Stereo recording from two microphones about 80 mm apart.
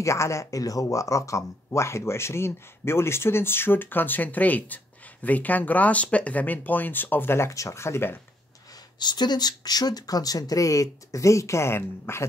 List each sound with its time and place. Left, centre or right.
0.0 s speech: left
9.0 s speech: left